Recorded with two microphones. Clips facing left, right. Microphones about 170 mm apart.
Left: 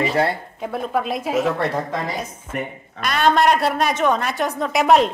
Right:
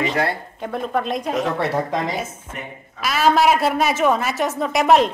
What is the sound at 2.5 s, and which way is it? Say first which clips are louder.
Speech: left 8 dB; 60° left (ahead or behind).